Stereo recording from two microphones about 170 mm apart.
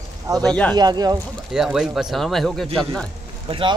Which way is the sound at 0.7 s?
25° right (ahead or behind).